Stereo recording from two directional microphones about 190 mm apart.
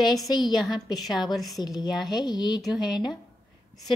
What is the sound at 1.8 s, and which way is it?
Speech, 20° left (ahead or behind).